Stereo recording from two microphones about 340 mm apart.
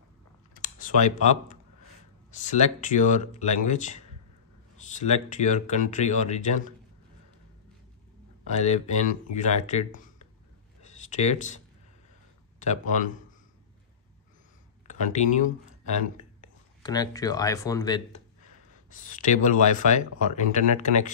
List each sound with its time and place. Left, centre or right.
0.8 s speech: left
4.9 s speech: left
8.5 s speech: centre
12.5 s speech: left
14.9 s speech: left
16.8 s speech: centre
19.0 s speech: left